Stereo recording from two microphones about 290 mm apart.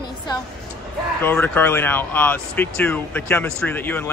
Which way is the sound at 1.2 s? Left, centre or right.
Centre.